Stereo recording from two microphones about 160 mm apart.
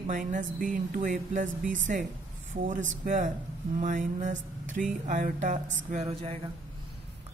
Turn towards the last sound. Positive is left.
turn(degrees=-35)  # may be behind; listen again after turning